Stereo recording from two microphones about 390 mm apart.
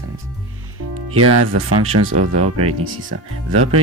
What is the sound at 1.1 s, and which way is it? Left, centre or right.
Speech, right.